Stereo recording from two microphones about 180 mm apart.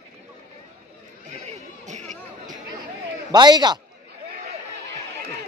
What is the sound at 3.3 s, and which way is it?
Speech, 25° right (ahead or behind).